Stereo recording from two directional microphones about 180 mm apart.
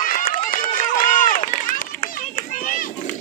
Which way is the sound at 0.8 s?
50° left (ahead or behind).